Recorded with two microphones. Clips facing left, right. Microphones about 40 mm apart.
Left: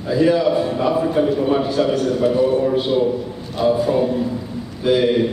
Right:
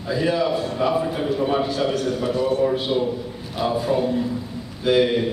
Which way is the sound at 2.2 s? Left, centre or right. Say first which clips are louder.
Left 7 dB; centre.